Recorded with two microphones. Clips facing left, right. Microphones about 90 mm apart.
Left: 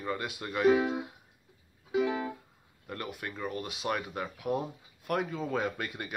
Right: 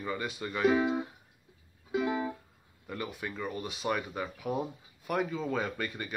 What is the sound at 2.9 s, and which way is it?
Speech, centre (ahead or behind).